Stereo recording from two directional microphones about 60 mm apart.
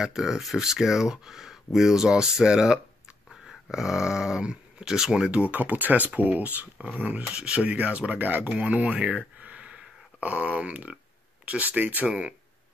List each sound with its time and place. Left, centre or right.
0.0 s speech: centre; by 12.1 s right
12.1 s speech: centre